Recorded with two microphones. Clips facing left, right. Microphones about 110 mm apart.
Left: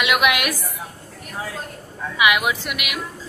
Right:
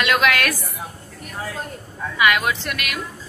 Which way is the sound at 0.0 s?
15° left (ahead or behind).